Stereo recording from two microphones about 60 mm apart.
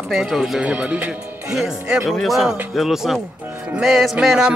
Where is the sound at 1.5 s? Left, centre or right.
Centre.